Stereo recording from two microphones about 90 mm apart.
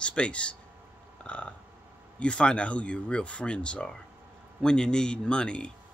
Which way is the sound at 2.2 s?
10° left (ahead or behind).